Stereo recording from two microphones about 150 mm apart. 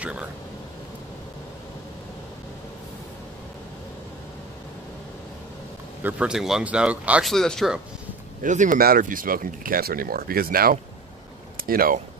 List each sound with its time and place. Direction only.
0.0 s speech: 10° right (ahead or behind)
6.0 s speech: 5° right (ahead or behind)
8.4 s speech: 55° right (ahead or behind); by 12.0 s 75° right (ahead or behind)